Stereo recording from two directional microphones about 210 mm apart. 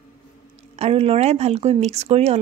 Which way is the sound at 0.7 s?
30° right (ahead or behind).